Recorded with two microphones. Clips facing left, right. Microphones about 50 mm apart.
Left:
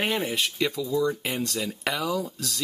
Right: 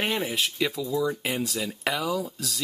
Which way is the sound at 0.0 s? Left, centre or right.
Centre.